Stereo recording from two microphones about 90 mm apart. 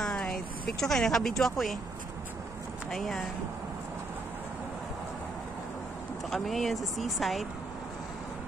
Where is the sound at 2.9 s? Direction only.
Centre (ahead or behind).